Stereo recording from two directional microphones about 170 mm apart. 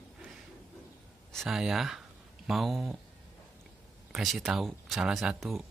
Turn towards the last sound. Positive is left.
turn(degrees=0)  # may be behind; listen again after turning